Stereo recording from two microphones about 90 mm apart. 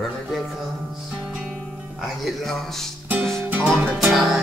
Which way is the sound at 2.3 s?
Centre (ahead or behind).